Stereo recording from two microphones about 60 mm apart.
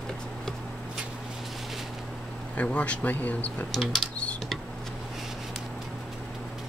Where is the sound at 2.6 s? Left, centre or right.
Left.